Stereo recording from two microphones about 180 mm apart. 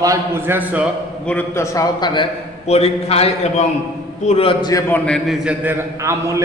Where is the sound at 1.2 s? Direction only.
10° left (ahead or behind).